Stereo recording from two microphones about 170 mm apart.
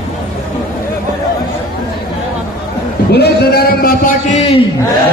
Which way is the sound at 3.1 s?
70° left (ahead or behind).